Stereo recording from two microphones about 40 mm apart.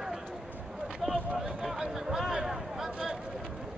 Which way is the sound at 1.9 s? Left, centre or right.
Centre.